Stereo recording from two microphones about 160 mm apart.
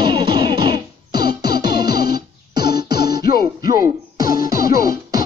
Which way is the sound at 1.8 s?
75° left (ahead or behind).